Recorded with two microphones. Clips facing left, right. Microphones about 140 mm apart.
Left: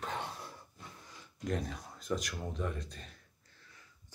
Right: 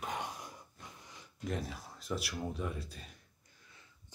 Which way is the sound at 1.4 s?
5° right (ahead or behind).